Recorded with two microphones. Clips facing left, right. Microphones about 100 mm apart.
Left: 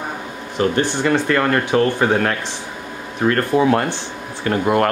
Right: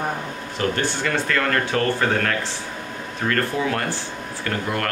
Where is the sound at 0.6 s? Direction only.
20° left (ahead or behind).